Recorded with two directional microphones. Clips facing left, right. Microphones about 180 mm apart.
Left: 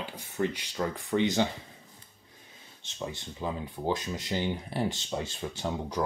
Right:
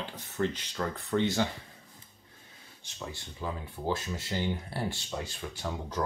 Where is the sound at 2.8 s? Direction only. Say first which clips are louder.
Left 4 dB; 20° left (ahead or behind).